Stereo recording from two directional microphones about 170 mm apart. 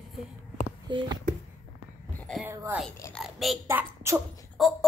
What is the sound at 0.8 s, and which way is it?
Speech, 25° right (ahead or behind).